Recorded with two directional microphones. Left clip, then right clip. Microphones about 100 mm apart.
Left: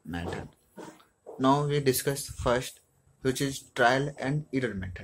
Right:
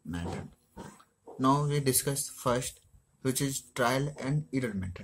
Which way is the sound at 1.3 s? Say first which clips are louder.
Left 3 dB; 25° right (ahead or behind).